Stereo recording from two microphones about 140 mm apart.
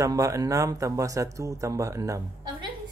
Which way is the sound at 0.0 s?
25° right (ahead or behind).